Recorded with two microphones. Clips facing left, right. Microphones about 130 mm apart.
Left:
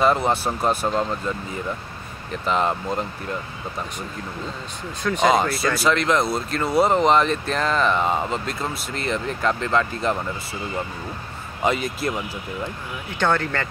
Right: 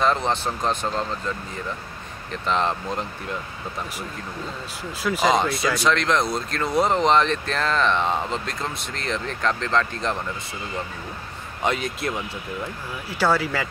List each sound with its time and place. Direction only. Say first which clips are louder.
0.0 s speech: left 3 dB; 5° left (ahead or behind)
2.4 s speech: left 1 dB; 5° left (ahead or behind)
5.0 s speech: left 2 dB; 5° right (ahead or behind)
11.6 s speech: left 2 dB; centre (ahead or behind)
13.2 s speech: even; 5° right (ahead or behind)